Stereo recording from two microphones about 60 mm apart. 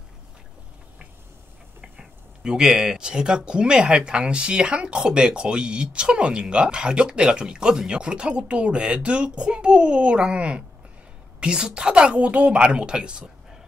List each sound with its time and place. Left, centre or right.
1.8 s speech: centre